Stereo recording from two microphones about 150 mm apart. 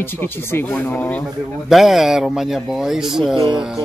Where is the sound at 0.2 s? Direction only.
15° left (ahead or behind).